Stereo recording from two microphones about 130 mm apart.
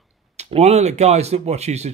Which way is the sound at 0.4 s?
55° right (ahead or behind).